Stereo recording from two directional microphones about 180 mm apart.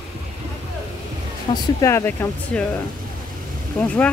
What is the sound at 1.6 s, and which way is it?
Speech, 15° left (ahead or behind).